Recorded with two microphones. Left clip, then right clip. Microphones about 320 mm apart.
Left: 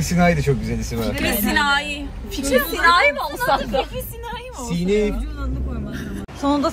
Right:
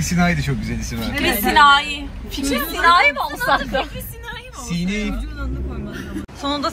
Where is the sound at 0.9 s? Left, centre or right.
Centre.